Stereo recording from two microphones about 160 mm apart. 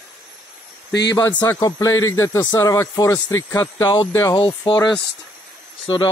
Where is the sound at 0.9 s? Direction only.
90° left.